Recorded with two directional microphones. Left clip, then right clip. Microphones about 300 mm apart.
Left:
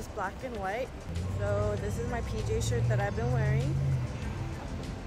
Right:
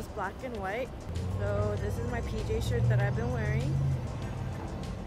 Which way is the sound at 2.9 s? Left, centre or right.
Centre.